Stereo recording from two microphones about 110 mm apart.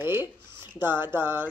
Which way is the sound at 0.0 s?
20° right (ahead or behind).